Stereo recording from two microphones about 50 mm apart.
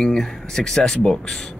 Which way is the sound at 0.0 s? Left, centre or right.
Centre.